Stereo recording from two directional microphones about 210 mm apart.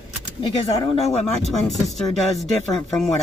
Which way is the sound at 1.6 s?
Centre (ahead or behind).